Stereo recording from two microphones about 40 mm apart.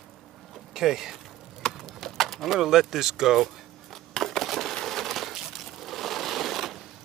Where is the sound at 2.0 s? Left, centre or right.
Centre.